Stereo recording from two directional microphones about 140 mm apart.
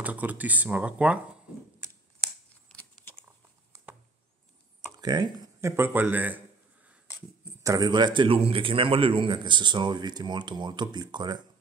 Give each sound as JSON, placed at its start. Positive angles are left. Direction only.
{"t": 0.0, "sound": "speech", "side_deg": -10}
{"t": 4.9, "sound": "a sound", "side_deg": -30}
{"t": 7.6, "sound": "a man's voice", "side_deg": -25}